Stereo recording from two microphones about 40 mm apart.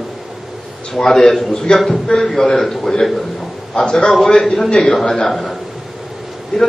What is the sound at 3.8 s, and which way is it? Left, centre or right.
Speech, left.